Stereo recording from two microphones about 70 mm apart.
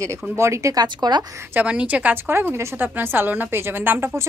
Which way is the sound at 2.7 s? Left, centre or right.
Right.